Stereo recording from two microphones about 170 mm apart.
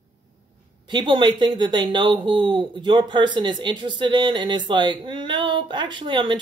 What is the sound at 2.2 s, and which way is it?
Speech, 30° right (ahead or behind).